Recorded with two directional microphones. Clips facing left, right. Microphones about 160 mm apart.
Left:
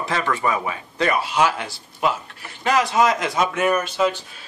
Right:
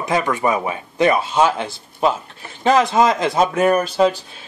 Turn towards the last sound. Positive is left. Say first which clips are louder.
# right 5 dB
turn(degrees=-35)  # may be behind; listen again after turning